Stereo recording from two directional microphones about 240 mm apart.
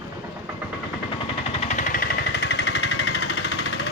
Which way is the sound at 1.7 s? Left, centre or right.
Left.